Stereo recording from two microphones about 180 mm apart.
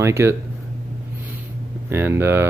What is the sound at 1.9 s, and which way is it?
Speech, 15° right (ahead or behind).